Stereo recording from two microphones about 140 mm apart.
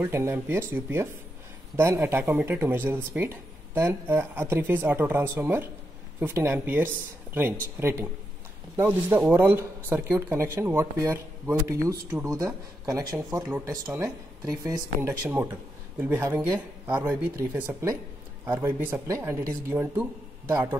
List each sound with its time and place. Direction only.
0.0 s speech: 15° right (ahead or behind)